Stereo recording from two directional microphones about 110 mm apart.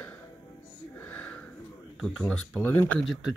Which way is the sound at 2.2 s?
15° left (ahead or behind).